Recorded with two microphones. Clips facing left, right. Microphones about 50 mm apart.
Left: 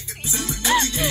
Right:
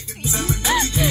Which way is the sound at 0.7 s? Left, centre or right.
Centre.